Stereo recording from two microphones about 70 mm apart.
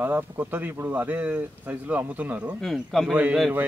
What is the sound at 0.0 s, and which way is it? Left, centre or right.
Speech, right.